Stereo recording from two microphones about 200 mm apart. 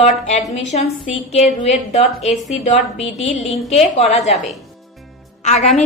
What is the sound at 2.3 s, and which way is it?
Speech, centre (ahead or behind).